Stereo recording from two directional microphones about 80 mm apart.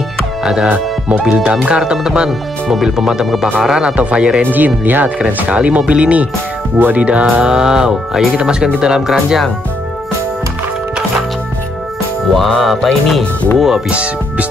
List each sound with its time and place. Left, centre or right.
0.7 s speech: centre
8.8 s music: centre
12.4 s music: centre